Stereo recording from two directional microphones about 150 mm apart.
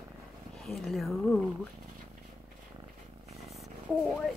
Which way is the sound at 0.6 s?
Centre (ahead or behind).